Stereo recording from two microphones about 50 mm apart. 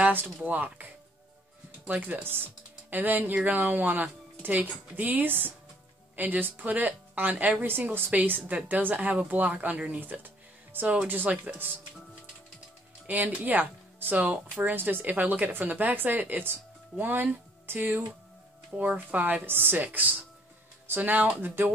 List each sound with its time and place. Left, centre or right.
0.1 s speech: right
1.9 s a woman's voice: right
8.1 s speech: right
13.0 s speech: right
18.8 s speech: right